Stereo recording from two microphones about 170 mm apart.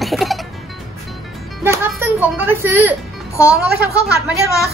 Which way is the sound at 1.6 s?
15° right (ahead or behind).